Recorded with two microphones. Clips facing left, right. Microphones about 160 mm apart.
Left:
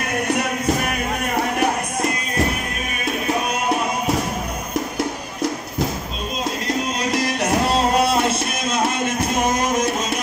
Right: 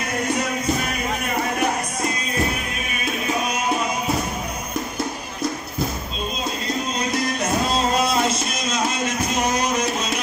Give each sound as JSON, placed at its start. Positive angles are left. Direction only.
{"t": 7.0, "sound": "music", "side_deg": 80}